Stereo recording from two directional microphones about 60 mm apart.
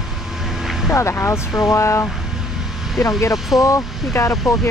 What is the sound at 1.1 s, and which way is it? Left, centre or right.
Speech, left.